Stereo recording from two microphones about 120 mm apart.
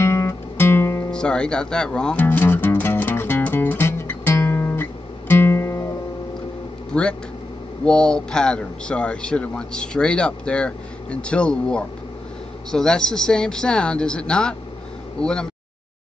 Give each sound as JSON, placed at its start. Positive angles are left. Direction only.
{"t": 0.0, "sound": "guitar", "side_deg": 20}
{"t": 1.1, "sound": "music", "side_deg": 5}
{"t": 6.9, "sound": "a man's voice", "side_deg": 10}